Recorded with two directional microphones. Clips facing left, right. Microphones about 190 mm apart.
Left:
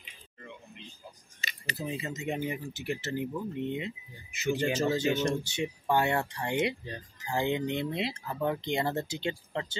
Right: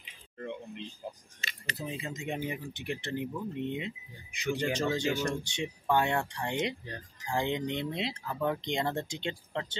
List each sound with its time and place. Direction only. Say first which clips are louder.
1.4 s speech: left 2 dB; 5° left (ahead or behind)
4.5 s speech: left 2 dB; 20° left (ahead or behind)
5.3 s speech: left 3 dB; 5° left (ahead or behind)